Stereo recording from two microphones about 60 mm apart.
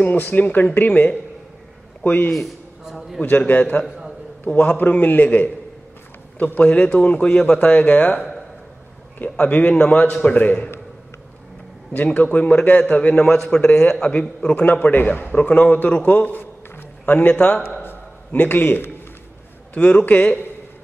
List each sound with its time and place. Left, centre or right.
0.0 s speech: left
2.8 s a man's voice: centre
3.3 s a man's voice: left; by 4.7 s centre
4.7 s a man's voice: left
9.2 s speech: left
11.9 s a man's voice: left
14.7 s a man's voice: left
17.8 s a sound: left
19.7 s speech: centre